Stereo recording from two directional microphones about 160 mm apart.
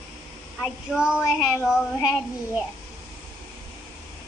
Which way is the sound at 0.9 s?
5° right (ahead or behind).